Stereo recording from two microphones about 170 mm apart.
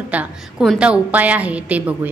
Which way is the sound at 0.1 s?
5° right (ahead or behind).